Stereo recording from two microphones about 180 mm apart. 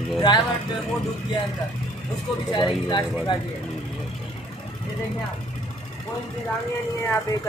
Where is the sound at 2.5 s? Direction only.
25° left (ahead or behind).